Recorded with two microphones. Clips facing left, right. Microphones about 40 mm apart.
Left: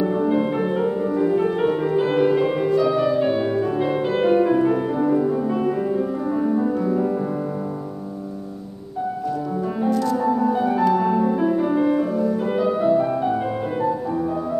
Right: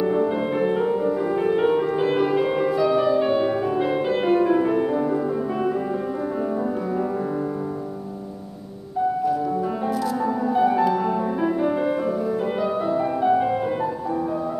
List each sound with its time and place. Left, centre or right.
0.0 s music: centre
9.8 s music: centre